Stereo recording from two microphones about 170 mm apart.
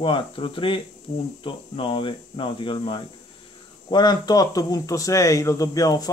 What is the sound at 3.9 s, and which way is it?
Speech, 25° left (ahead or behind).